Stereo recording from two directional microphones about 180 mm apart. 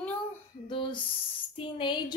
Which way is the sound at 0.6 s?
25° left (ahead or behind).